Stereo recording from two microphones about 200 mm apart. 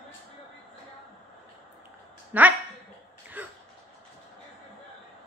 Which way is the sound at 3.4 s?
10° right (ahead or behind).